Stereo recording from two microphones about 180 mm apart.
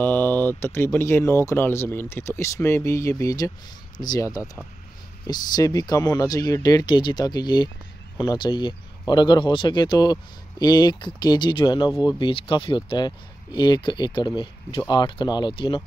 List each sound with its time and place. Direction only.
0.0 s speech: 10° left (ahead or behind); by 15.8 s 25° left (ahead or behind)